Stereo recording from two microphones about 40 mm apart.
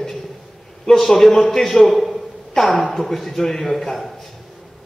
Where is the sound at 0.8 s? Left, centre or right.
Centre.